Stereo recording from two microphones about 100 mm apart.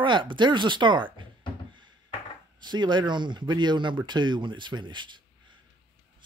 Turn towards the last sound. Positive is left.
turn(degrees=-50)  # may be behind; listen again after turning